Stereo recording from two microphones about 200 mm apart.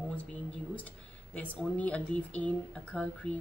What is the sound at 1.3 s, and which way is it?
A woman's voice, 5° left (ahead or behind).